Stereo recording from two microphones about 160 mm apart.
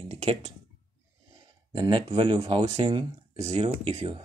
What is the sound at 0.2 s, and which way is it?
Speech, 40° right (ahead or behind).